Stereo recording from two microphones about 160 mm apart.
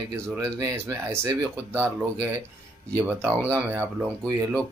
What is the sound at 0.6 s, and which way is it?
Speech, 20° right (ahead or behind).